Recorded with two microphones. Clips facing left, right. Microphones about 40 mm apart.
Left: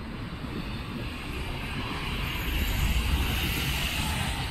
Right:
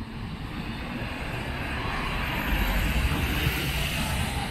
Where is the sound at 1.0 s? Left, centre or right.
Centre.